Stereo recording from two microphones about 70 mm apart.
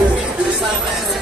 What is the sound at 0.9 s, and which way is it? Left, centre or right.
Music, centre.